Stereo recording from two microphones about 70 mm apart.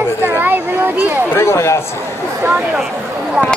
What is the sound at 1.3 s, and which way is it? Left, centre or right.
Speech, left.